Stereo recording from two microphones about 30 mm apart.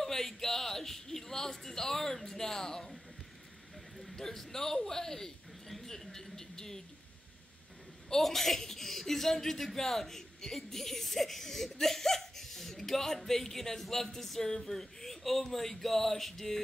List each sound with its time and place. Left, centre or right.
0.0 s speech: centre
3.9 s a man's voice: centre
8.2 s speech: centre